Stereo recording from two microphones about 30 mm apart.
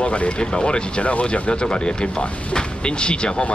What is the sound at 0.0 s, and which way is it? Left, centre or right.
Speech, left.